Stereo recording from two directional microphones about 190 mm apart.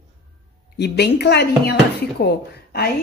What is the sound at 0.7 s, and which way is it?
Speech, 60° left (ahead or behind).